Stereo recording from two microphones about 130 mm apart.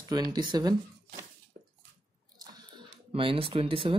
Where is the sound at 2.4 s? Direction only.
40° right (ahead or behind).